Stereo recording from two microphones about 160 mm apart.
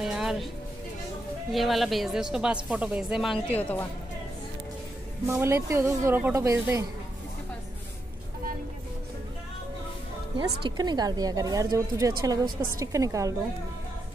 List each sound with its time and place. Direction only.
0.0 s music: 5° right (ahead or behind)
1.5 s speech: centre (ahead or behind)
3.4 s a woman's voice: 10° left (ahead or behind)
5.2 s speech: 15° right (ahead or behind)
10.6 s a woman's voice: 25° right (ahead or behind)